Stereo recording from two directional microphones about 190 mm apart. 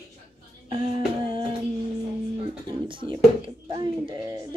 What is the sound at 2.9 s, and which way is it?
Speech, 25° right (ahead or behind).